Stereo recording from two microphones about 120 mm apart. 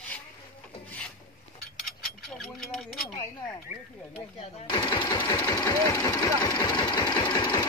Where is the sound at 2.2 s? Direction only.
Centre (ahead or behind).